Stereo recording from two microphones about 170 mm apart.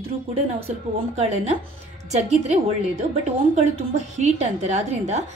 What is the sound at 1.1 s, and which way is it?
A woman's voice, 40° right (ahead or behind).